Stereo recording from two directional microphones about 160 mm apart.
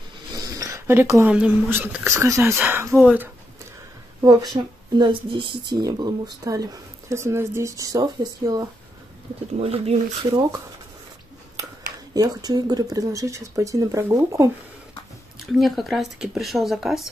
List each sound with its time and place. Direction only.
0.3 s a sound: 25° right (ahead or behind)
1.3 s speech: 10° right (ahead or behind)
4.2 s speech: 20° right (ahead or behind)
9.6 s speech: 40° right (ahead or behind)
12.1 s speech: 25° right (ahead or behind)
15.4 s speech: centre (ahead or behind)